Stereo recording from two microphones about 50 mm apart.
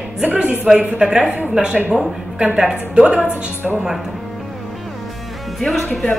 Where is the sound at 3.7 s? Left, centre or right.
Centre.